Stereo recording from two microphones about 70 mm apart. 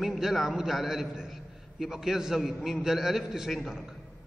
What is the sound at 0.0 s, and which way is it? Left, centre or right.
A man's voice, centre.